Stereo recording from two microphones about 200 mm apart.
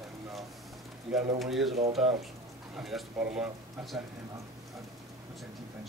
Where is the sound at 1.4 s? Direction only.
Centre (ahead or behind).